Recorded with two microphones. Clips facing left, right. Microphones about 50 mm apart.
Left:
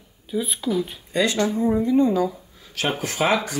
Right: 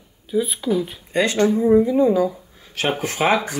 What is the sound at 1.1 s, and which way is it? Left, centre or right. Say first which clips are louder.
Speech: right 3 dB; right.